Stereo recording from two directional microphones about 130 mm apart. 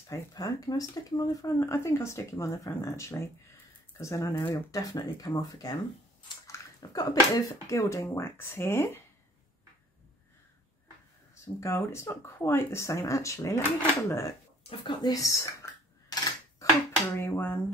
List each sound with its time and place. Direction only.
0.1 s speech: 30° left (ahead or behind)
11.3 s speech: 20° left (ahead or behind)
14.6 s speech: 45° left (ahead or behind)
15.0 s speech: 25° left (ahead or behind)
17.1 s a sound: 20° left (ahead or behind)